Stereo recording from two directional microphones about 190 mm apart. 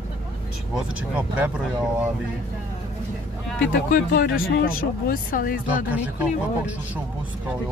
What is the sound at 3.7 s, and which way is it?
Speech, 55° left (ahead or behind).